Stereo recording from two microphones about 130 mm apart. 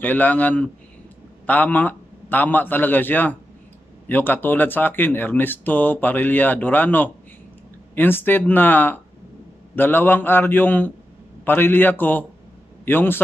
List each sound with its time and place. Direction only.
0.0 s a man's voice: 10° left (ahead or behind)